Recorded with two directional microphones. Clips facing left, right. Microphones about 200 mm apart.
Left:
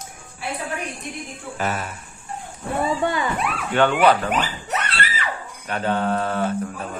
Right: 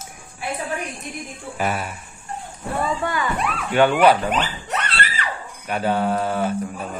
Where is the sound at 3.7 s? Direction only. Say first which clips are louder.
Right 2 dB; 10° right (ahead or behind).